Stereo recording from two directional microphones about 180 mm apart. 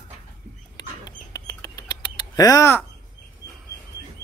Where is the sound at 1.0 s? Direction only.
20° left (ahead or behind).